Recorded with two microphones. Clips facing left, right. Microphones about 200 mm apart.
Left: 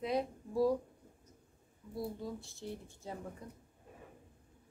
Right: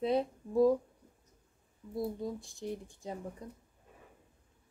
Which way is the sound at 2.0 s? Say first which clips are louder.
Right 4 dB; 15° right (ahead or behind).